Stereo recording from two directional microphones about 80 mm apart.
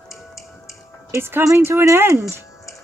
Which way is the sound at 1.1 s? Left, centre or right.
Right.